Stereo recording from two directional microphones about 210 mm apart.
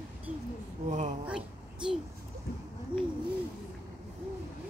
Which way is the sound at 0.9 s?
35° right (ahead or behind).